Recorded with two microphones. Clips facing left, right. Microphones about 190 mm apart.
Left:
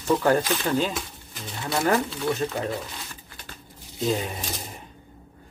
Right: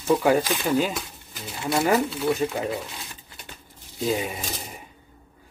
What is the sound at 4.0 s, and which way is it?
Speech, 5° right (ahead or behind).